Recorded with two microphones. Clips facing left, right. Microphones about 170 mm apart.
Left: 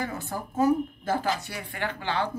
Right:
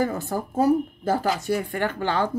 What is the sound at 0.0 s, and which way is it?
Speech, 40° right (ahead or behind).